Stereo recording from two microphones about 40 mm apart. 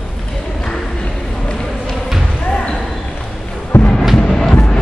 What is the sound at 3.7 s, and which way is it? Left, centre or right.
Music, left.